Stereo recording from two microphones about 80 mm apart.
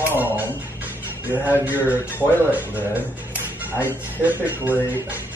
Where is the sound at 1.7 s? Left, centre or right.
Right.